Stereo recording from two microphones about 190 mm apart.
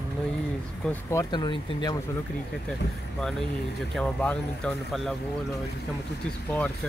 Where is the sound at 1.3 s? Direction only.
25° left (ahead or behind).